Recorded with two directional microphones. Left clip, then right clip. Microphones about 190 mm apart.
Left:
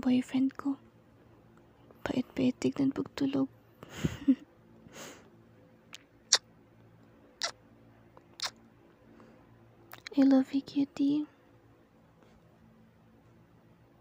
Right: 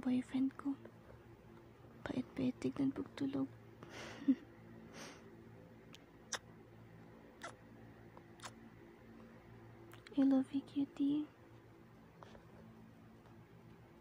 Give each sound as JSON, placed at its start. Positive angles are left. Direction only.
{"t": 0.0, "sound": "speech", "side_deg": 35}
{"t": 2.0, "sound": "speech", "side_deg": 35}
{"t": 3.9, "sound": "a sound", "side_deg": 25}
{"t": 4.9, "sound": "snort", "side_deg": 25}
{"t": 9.8, "sound": "speech", "side_deg": 35}